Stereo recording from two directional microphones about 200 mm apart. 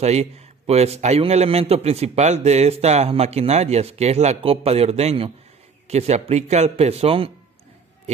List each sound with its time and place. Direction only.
0.0 s a man's voice: 35° right (ahead or behind)